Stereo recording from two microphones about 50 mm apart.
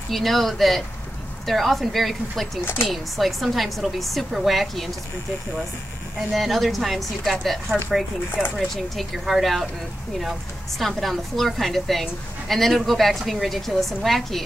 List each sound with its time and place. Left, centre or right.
0.1 s a woman's voice: centre
2.6 s speech: left
2.9 s a woman's voice: centre
6.1 s a woman's voice: centre
11.0 s a woman's voice: centre